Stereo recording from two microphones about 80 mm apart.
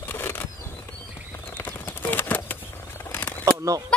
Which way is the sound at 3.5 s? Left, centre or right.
Right.